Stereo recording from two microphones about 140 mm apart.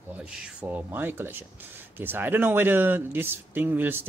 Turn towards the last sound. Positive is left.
turn(degrees=-15)  # may be behind; listen again after turning